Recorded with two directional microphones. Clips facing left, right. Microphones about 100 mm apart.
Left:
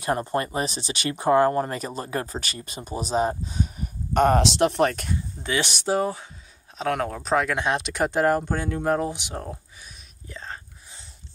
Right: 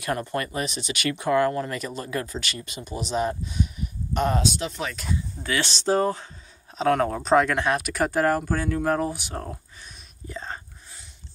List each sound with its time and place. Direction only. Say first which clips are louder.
0.0 s speech: left 3 dB; 30° left (ahead or behind); by 4.4 s 50° left (ahead or behind)
4.4 s speech: left 7 dB; 75° left (ahead or behind); by 5.1 s 55° left (ahead or behind)
5.4 s speech: left 1 dB; 20° left (ahead or behind); by 7.5 s centre (ahead or behind)
7.5 s speech: right 1 dB; 20° left (ahead or behind)
10.2 s whispering: right 3 dB; centre (ahead or behind)